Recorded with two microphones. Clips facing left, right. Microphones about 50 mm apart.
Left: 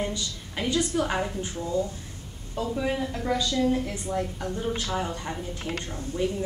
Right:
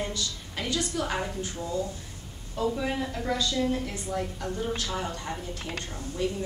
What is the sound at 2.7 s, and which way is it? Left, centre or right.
A woman's voice, centre.